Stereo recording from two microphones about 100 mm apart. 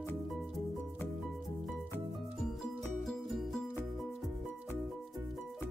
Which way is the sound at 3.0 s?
Centre (ahead or behind).